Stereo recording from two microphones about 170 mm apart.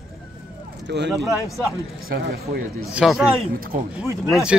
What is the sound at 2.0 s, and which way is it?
Speech, 70° right (ahead or behind).